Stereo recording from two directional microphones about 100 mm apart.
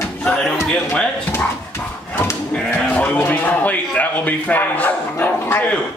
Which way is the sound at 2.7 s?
15° left (ahead or behind).